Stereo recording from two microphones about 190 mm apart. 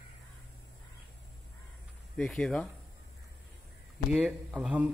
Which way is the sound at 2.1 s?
5° left (ahead or behind).